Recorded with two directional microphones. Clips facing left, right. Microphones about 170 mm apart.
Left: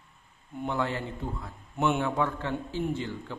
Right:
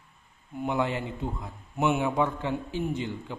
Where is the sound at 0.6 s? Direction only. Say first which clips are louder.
Right 2 dB; 15° right (ahead or behind).